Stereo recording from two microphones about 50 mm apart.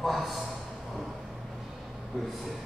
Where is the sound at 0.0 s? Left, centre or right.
Centre.